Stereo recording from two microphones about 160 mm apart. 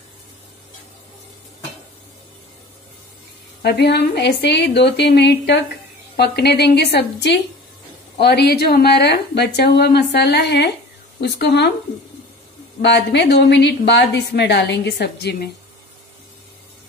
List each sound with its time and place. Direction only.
3.6 s a woman's voice: 90° left
12.8 s a woman's voice: 90° left